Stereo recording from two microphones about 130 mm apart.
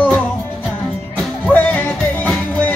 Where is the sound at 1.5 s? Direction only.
10° left (ahead or behind).